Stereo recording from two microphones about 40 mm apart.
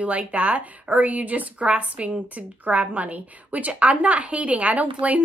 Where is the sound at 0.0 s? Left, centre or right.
Right.